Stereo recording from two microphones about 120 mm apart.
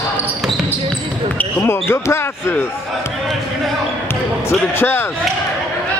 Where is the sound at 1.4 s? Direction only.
20° left (ahead or behind).